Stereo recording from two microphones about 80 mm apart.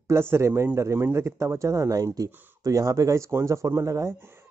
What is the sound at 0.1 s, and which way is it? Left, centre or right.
A man's voice, right.